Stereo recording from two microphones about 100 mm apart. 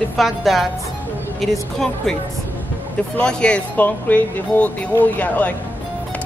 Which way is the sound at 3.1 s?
10° left (ahead or behind).